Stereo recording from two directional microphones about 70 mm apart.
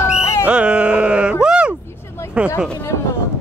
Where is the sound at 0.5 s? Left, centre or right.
Centre.